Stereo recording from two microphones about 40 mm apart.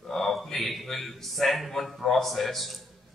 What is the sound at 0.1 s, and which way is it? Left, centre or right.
A man's voice, centre.